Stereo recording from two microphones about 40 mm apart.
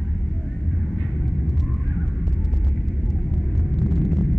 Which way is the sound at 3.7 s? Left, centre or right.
Centre.